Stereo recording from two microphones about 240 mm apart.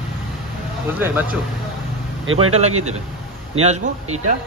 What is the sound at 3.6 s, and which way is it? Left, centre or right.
Speech, right.